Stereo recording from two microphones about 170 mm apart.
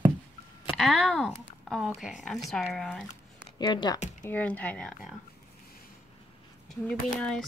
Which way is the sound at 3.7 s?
25° left (ahead or behind).